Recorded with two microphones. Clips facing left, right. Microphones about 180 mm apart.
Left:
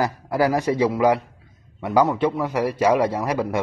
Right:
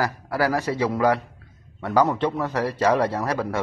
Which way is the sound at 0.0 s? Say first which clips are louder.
Left 3 dB; 20° left (ahead or behind).